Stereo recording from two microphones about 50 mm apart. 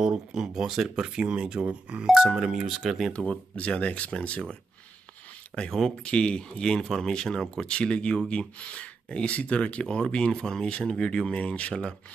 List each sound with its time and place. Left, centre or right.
0.0 s speech: centre
2.0 s speech: centre
2.6 s speech: centre
3.3 s speech: left
5.7 s speech: centre